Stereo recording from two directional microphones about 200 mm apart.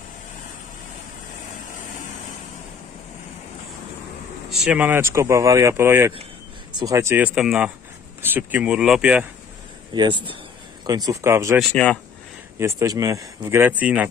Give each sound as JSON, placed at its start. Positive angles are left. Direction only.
{"t": 4.5, "sound": "speech", "side_deg": 0}
{"t": 7.3, "sound": "speech", "side_deg": -5}
{"t": 9.9, "sound": "speech", "side_deg": -25}
{"t": 11.7, "sound": "speech", "side_deg": 5}
{"t": 12.5, "sound": "speech", "side_deg": -15}